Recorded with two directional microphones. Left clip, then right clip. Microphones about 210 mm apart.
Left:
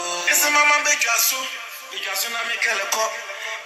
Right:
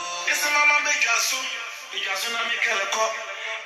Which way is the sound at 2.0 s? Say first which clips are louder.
Left 1 dB; 40° left (ahead or behind).